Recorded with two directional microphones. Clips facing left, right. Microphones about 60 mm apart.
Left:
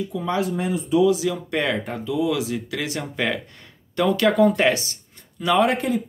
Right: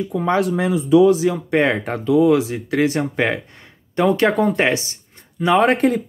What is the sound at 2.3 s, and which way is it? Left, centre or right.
Speech, right.